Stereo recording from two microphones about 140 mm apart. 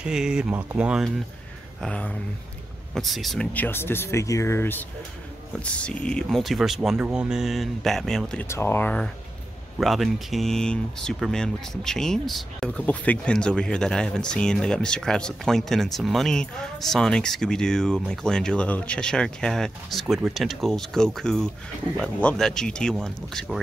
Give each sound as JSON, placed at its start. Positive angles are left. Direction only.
{"t": 0.0, "sound": "speech", "side_deg": -5}
{"t": 1.8, "sound": "speech", "side_deg": 5}
{"t": 3.5, "sound": "speech", "side_deg": 15}
{"t": 8.5, "sound": "speech", "side_deg": 20}